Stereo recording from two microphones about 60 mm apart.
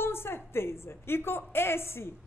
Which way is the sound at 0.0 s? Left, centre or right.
Left.